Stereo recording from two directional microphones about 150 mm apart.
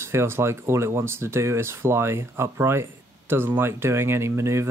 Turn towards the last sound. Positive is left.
turn(degrees=-20)  # may be behind; listen again after turning